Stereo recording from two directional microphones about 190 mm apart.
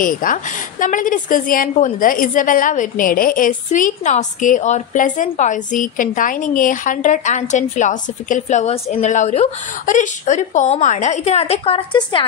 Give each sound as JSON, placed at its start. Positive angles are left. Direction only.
{"t": 0.0, "sound": "a woman's voice", "side_deg": 45}